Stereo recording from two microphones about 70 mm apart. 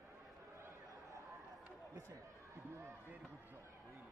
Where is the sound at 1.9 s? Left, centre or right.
Right.